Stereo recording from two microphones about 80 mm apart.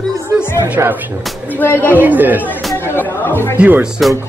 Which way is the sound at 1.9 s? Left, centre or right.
Right.